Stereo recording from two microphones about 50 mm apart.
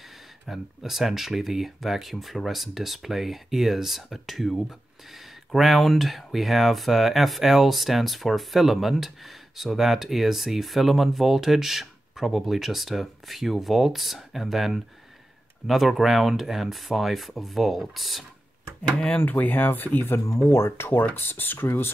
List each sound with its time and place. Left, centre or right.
0.5 s speech: centre
19.0 s speech: left
20.5 s speech: left